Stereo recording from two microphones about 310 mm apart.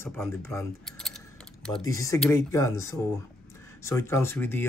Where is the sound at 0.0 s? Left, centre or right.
Centre.